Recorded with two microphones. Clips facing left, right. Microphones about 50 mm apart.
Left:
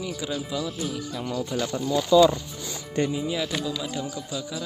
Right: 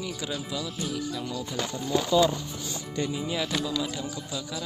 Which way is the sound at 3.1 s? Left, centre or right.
Centre.